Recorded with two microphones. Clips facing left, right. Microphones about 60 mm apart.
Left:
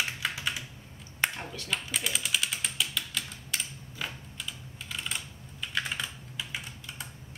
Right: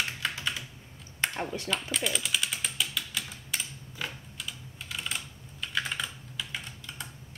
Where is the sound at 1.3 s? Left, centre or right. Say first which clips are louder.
Right 6 dB; right.